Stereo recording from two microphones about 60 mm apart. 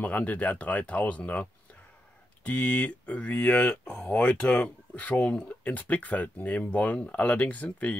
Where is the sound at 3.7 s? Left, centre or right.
Centre.